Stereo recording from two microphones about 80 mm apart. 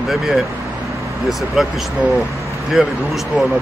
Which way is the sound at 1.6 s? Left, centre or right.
Centre.